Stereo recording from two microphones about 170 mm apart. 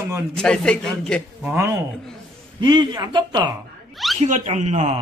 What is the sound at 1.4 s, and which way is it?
Speech, 15° right (ahead or behind).